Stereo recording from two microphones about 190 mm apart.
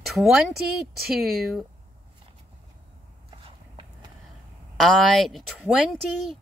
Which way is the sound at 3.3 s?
25° right (ahead or behind).